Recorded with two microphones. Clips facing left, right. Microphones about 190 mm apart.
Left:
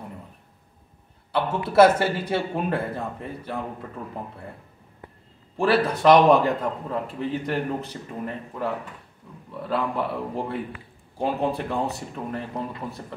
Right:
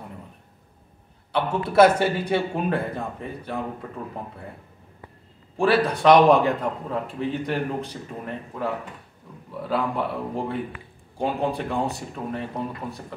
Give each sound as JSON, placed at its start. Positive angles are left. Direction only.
{"t": 1.3, "sound": "a man's voice", "side_deg": 5}
{"t": 5.6, "sound": "a man's voice", "side_deg": 0}